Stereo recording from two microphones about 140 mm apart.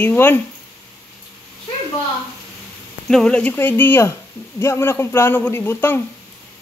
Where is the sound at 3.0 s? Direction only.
5° left (ahead or behind).